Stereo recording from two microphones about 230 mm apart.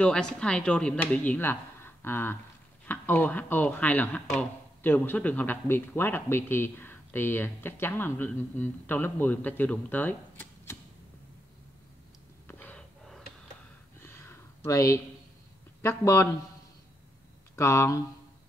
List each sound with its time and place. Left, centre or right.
0.0 s a woman's voice: centre
12.4 s gasp: centre
13.9 s a sound: centre
15.8 s speech: centre
17.6 s speech: centre